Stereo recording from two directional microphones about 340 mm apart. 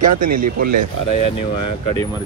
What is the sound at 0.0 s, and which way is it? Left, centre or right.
Speech, right.